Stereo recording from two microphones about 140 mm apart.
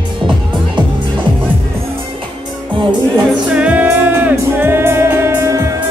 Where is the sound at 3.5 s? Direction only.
10° right (ahead or behind).